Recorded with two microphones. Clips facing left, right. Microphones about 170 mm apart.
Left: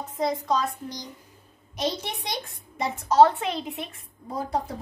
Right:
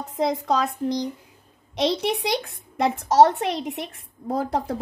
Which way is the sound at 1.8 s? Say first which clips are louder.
Right 7 dB; 75° right (ahead or behind).